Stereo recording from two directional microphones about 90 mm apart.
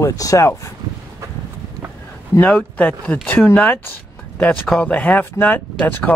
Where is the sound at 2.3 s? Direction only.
20° left (ahead or behind).